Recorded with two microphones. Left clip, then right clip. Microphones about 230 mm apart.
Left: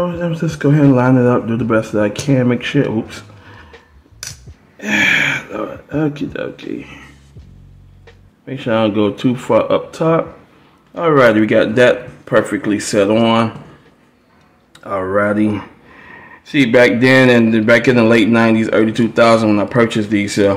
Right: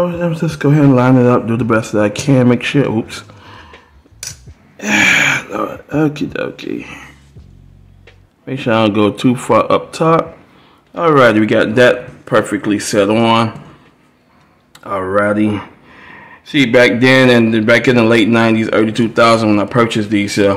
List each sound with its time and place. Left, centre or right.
0.0 s speech: centre
4.7 s speech: centre
8.5 s speech: centre
14.7 s speech: centre